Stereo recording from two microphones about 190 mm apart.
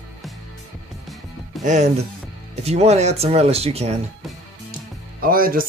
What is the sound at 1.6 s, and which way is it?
Speech, 40° right (ahead or behind).